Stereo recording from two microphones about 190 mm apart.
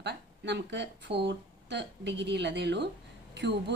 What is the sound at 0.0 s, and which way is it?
A woman's voice, 65° right (ahead or behind).